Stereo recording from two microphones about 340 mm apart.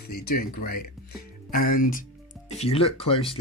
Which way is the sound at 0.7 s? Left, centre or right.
Left.